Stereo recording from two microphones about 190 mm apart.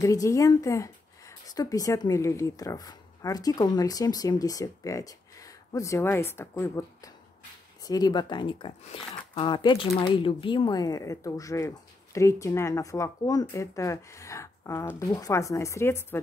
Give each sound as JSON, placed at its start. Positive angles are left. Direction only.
{"t": 0.0, "sound": "a woman's voice", "side_deg": 15}